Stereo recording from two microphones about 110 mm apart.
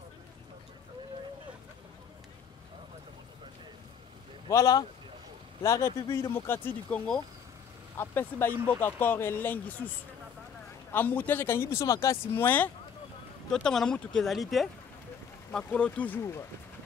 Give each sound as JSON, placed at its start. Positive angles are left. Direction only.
{"t": 4.5, "sound": "speech", "side_deg": 30}
{"t": 6.3, "sound": "speech", "side_deg": 20}
{"t": 10.9, "sound": "speech", "side_deg": 15}
{"t": 12.4, "sound": "speech", "side_deg": 15}
{"t": 13.5, "sound": "speech", "side_deg": 5}
{"t": 15.5, "sound": "speech", "side_deg": 10}
{"t": 16.2, "sound": "speech", "side_deg": 25}